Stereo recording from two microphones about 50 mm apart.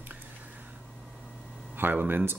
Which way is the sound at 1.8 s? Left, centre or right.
Right.